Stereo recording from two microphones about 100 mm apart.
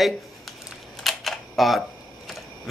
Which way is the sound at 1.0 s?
Centre (ahead or behind).